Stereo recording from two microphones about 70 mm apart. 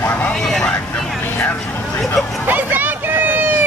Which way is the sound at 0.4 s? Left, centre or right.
Centre.